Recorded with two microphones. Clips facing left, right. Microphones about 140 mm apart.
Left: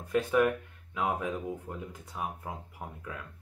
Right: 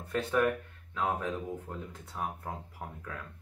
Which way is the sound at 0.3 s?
10° left (ahead or behind).